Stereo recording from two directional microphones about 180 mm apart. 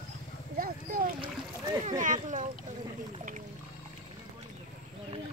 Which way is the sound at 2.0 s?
45° right (ahead or behind).